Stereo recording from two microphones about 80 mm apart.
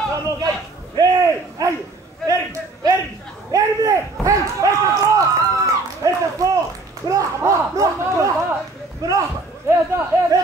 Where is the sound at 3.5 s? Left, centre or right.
Right.